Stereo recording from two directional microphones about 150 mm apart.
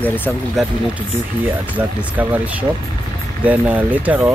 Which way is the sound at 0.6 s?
Centre (ahead or behind).